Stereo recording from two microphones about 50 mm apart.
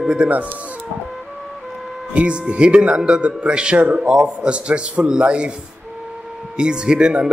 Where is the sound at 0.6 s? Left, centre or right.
Right.